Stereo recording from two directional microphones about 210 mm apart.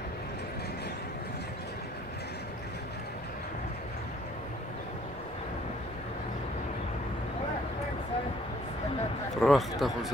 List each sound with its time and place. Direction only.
9.4 s a man's voice: centre (ahead or behind)